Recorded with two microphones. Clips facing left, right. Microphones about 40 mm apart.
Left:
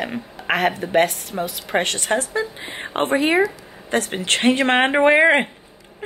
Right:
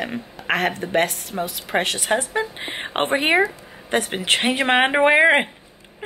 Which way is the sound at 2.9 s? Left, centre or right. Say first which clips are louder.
Left 1 dB; right.